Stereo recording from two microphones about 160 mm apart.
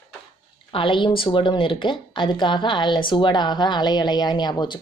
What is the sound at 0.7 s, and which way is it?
A woman's voice, 30° left (ahead or behind).